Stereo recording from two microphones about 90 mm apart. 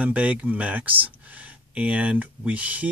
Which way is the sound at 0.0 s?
15° right (ahead or behind).